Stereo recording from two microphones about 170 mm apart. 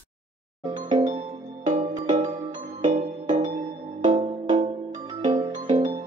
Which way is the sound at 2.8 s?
45° right (ahead or behind).